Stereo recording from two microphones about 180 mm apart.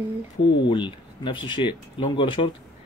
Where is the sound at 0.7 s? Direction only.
25° left (ahead or behind).